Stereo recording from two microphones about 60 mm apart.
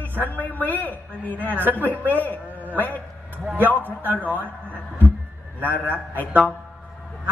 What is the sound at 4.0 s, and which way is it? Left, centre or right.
Speech, right.